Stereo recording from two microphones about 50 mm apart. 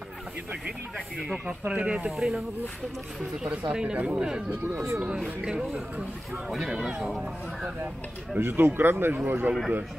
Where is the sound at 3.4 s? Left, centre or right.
Centre.